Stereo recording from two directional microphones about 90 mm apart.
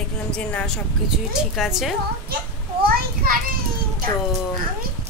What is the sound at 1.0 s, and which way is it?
Speech, 5° right (ahead or behind).